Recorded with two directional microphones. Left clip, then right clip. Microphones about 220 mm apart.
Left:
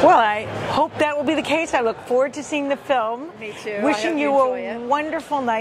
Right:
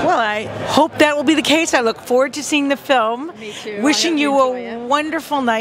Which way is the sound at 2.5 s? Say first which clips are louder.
Right 5 dB; 60° right (ahead or behind).